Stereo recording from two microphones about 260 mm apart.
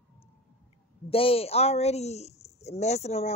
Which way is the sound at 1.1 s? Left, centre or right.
Left.